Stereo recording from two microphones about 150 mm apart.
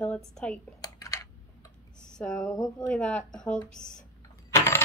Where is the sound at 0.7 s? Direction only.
25° left (ahead or behind).